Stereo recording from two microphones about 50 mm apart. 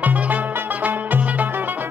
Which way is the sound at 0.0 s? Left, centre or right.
Right.